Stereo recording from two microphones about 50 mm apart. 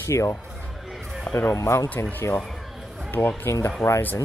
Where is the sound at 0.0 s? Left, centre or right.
Left.